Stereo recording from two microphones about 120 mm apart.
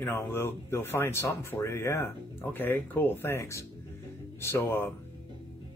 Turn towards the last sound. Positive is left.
turn(degrees=20)  # may be behind; listen again after turning